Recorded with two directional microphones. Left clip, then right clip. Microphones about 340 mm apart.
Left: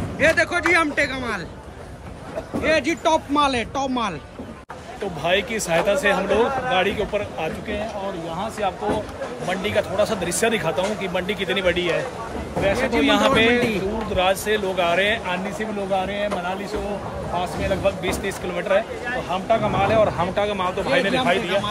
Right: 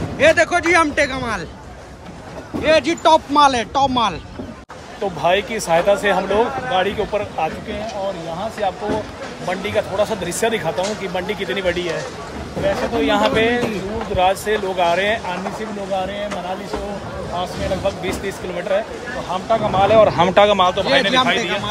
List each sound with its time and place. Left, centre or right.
0.2 s speech: centre
2.6 s speech: centre
5.2 s speech: centre
9.5 s speech: centre
17.4 s speech: centre
19.9 s speech: right
20.4 s speech: centre